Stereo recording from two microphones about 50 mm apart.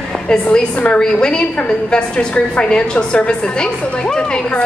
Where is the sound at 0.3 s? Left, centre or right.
Centre.